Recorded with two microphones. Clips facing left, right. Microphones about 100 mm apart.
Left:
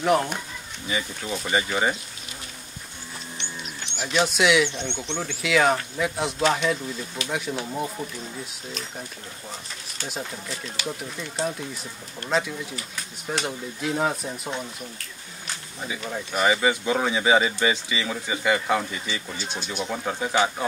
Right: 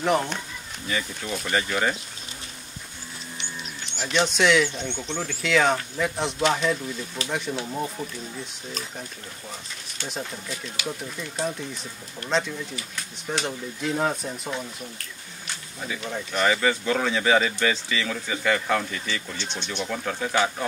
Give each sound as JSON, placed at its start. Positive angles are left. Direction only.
{"t": 0.0, "sound": "speech", "side_deg": 0}
{"t": 0.8, "sound": "speech", "side_deg": 15}
{"t": 4.0, "sound": "speech", "side_deg": 5}
{"t": 4.6, "sound": "speech", "side_deg": -5}
{"t": 10.9, "sound": "speech", "side_deg": 5}
{"t": 16.3, "sound": "speech", "side_deg": 15}
{"t": 19.8, "sound": "speech", "side_deg": 15}